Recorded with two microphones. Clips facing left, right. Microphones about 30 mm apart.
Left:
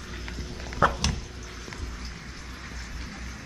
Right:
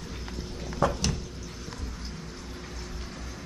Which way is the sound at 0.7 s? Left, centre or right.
Left.